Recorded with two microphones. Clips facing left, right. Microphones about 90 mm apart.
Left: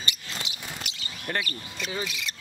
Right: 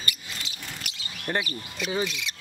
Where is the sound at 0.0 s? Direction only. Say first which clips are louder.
Left 1 dB; 20° left (ahead or behind).